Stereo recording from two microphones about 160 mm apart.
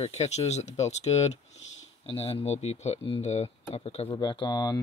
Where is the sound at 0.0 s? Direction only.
40° left (ahead or behind).